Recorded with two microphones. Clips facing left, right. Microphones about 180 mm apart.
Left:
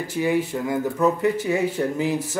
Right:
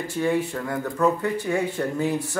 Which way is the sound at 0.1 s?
15° left (ahead or behind).